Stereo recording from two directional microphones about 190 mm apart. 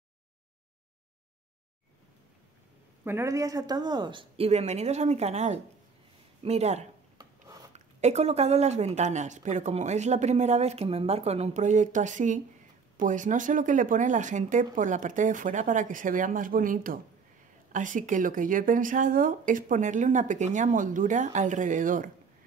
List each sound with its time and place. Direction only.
3.0 s a woman's voice: 15° right (ahead or behind); by 22.1 s 45° right (ahead or behind)